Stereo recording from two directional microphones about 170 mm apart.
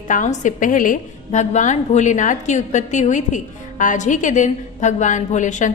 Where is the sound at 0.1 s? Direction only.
45° left (ahead or behind).